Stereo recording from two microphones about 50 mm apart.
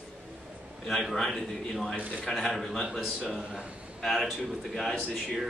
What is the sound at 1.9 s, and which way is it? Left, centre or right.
Speech, centre.